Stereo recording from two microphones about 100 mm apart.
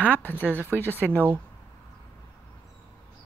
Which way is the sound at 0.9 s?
15° left (ahead or behind).